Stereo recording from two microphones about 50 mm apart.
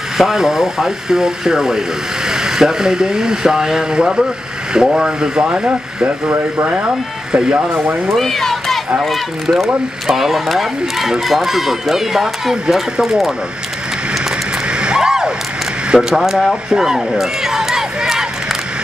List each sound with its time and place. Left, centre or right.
0.2 s speech: centre
5.4 s speech: right
7.5 s speech: right
8.1 s speech: centre
14.7 s a sound: centre
15.9 s speech: centre
17.1 s run: centre